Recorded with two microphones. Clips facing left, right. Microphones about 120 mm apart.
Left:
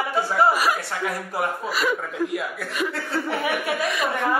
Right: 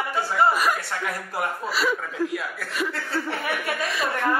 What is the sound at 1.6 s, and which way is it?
Speech, 50° left (ahead or behind).